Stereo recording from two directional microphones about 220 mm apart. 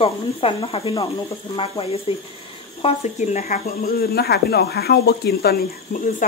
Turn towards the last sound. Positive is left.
turn(degrees=40)  # may be behind; listen again after turning